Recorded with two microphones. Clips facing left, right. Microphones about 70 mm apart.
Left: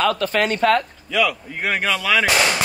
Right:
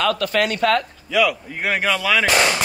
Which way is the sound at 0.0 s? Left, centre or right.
Left.